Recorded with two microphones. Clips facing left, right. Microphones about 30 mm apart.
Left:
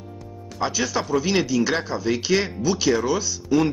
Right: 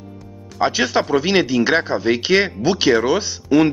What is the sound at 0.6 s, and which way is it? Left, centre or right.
Speech, right.